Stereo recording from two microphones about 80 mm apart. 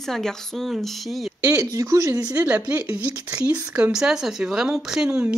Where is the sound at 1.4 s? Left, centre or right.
Right.